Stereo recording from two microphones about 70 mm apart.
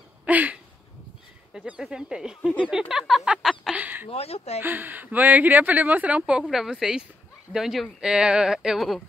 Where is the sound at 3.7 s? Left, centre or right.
Right.